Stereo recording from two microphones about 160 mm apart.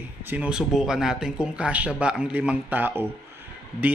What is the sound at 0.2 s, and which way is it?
Speech, 10° right (ahead or behind).